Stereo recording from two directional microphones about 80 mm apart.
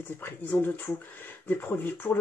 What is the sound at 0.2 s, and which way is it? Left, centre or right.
Speech, left.